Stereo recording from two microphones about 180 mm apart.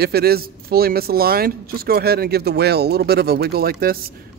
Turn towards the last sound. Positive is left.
turn(degrees=-55)  # may be behind; listen again after turning